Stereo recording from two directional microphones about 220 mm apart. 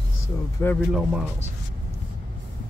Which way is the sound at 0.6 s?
10° left (ahead or behind).